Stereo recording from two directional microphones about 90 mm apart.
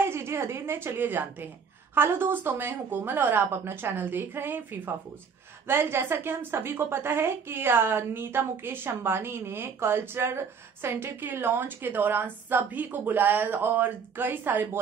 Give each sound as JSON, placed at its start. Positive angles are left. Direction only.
{"t": 0.0, "sound": "a woman's voice", "side_deg": -25}